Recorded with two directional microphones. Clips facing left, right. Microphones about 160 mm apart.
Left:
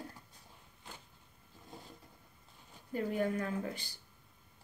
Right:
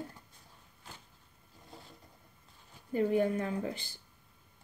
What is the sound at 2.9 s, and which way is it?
Speech, 25° right (ahead or behind).